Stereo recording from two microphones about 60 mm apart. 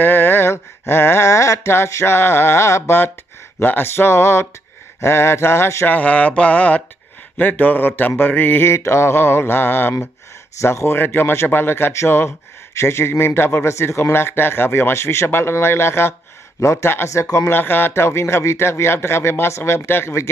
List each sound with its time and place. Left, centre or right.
0.0 s a sound: left
1.3 s a sound: left
1.7 s speech: left
2.1 s speech: left
3.5 s speech: left
5.9 s mantra: left
10.6 s mantra: left
11.9 s speech: left
13.7 s speech: left
17.6 s speech: left